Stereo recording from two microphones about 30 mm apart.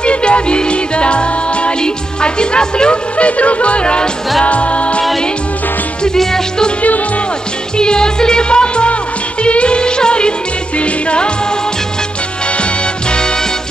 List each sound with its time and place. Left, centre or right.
0.0 s music: left
3.2 s music: left
7.7 s music: left